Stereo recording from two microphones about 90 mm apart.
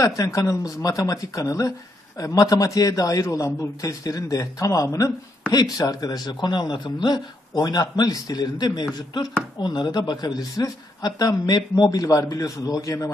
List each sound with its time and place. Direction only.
0.0 s a man's voice: 35° left (ahead or behind)